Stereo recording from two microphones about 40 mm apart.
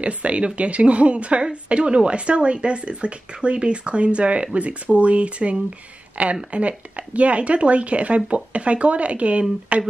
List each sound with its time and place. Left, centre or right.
0.0 s a woman's voice: right